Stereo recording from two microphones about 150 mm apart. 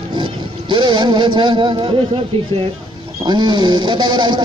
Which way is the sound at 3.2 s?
30° right (ahead or behind).